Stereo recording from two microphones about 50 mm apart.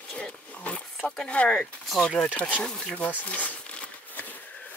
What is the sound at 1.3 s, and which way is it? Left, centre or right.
Speech, left.